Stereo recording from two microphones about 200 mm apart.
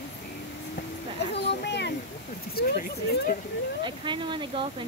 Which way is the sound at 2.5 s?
50° left (ahead or behind).